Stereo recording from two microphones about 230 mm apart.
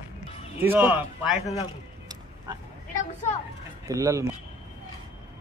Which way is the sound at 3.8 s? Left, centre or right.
Centre.